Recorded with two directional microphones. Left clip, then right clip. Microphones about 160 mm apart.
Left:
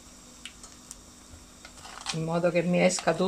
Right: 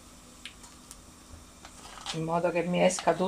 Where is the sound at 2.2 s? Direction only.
35° left (ahead or behind).